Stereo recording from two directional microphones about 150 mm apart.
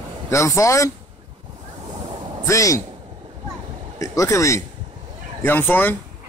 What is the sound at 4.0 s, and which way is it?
Speech, 20° left (ahead or behind).